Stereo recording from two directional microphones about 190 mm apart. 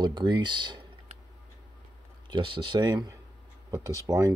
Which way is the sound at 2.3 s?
25° right (ahead or behind).